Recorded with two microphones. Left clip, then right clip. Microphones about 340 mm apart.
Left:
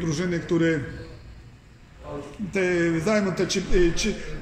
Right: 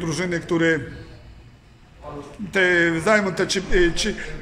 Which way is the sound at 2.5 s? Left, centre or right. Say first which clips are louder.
Right 6 dB; right.